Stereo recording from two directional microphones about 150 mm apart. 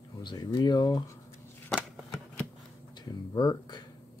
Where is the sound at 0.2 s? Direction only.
30° left (ahead or behind).